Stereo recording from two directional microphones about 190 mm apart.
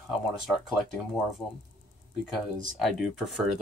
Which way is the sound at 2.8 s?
Centre (ahead or behind).